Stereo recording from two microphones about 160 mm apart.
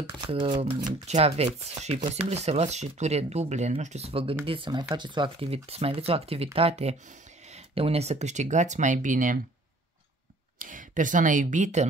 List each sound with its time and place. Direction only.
0.3 s speech: 35° right (ahead or behind)
1.0 s speech: 45° right (ahead or behind)
10.6 s speech: 55° right (ahead or behind)